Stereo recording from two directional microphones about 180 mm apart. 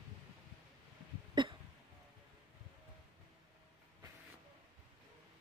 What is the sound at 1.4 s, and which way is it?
Hiccup, 25° right (ahead or behind).